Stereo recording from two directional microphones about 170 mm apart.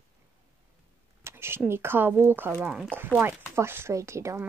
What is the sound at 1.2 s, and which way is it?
Speech, 15° right (ahead or behind).